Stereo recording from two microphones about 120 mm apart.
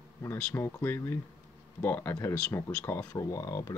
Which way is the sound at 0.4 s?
15° left (ahead or behind).